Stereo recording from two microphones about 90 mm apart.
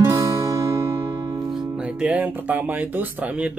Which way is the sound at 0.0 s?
35° right (ahead or behind).